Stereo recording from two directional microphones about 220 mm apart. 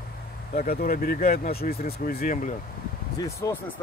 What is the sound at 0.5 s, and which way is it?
Speech, 40° left (ahead or behind).